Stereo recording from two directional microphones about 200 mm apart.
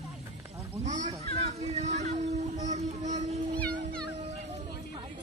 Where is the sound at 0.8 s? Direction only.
35° right (ahead or behind).